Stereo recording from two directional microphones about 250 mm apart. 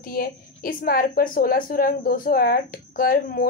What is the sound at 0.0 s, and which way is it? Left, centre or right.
A woman's voice, left.